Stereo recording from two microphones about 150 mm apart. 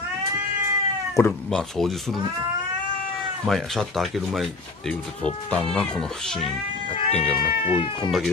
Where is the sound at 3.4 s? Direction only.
Centre (ahead or behind).